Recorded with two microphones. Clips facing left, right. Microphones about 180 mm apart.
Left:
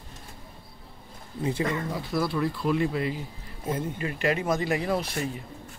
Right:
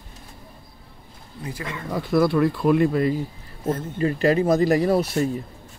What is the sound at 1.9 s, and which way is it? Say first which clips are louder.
Speech: right 8 dB; 55° right (ahead or behind).